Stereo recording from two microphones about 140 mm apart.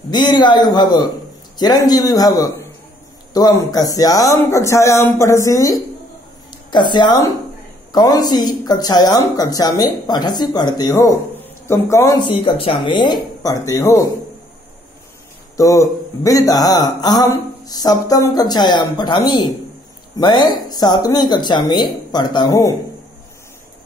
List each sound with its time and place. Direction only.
0.1 s a man's voice: 30° left (ahead or behind)
12.2 s speech: 35° left (ahead or behind)
15.5 s speech: 25° left (ahead or behind)